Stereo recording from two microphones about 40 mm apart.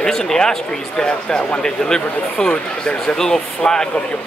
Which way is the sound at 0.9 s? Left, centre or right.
Left.